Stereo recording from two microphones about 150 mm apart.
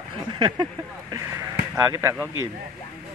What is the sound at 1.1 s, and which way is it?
A man's voice, 20° right (ahead or behind).